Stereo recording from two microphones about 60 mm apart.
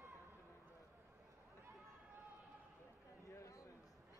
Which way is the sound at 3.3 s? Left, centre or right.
Left.